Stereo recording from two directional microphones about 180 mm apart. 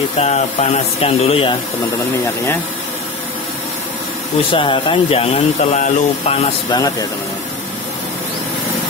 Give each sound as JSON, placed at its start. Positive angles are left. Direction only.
{"t": 0.2, "sound": "speech", "side_deg": 35}
{"t": 4.4, "sound": "speech", "side_deg": 30}
{"t": 6.7, "sound": "speech", "side_deg": 20}